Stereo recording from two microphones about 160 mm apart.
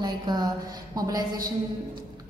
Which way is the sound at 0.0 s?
25° right (ahead or behind).